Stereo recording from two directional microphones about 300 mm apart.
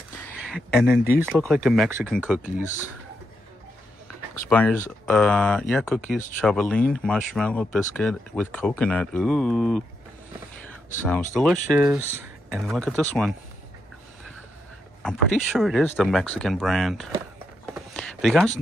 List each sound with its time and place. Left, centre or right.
0.2 s a sound: centre
1.2 s speech: centre
4.5 s speech: centre
11.1 s speech: centre
15.0 s speech: centre
17.7 s a sound: centre